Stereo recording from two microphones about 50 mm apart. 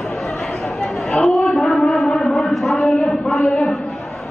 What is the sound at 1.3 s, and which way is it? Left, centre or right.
Female singing, centre.